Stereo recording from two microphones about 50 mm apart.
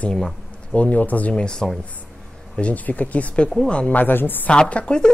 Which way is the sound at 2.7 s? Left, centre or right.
Left.